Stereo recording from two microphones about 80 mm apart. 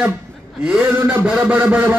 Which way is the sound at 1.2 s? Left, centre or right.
Centre.